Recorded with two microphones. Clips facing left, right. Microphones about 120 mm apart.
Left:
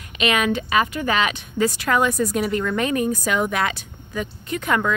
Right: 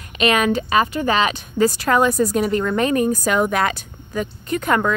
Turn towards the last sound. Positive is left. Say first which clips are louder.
# right 3 dB
turn(degrees=-45)  # may be behind; listen again after turning